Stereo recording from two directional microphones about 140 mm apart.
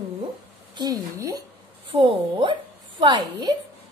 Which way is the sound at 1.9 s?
35° right (ahead or behind).